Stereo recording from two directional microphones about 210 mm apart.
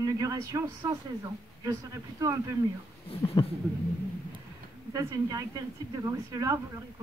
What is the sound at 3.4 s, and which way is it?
Speech, 20° left (ahead or behind).